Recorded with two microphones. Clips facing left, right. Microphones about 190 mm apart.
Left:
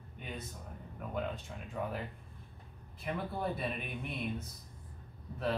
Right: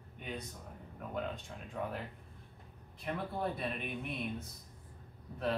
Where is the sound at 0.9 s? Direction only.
Centre (ahead or behind).